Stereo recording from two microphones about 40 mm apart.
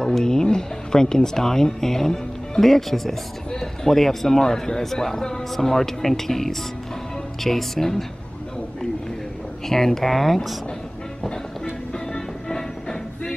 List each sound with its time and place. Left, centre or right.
0.1 s speech: centre
9.7 s speech: centre
11.9 s music: centre